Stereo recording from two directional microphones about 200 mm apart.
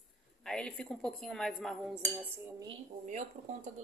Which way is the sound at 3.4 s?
35° right (ahead or behind).